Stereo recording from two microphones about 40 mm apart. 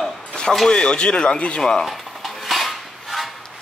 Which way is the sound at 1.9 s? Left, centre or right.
Centre.